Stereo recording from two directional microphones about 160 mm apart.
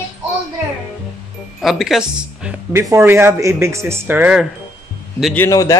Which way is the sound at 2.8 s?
15° right (ahead or behind).